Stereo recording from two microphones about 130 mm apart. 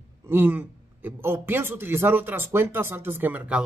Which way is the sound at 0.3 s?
15° right (ahead or behind).